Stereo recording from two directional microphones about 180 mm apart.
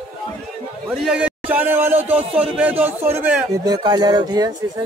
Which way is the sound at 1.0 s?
5° right (ahead or behind).